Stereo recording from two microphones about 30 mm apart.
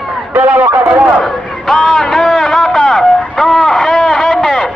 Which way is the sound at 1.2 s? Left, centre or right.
Centre.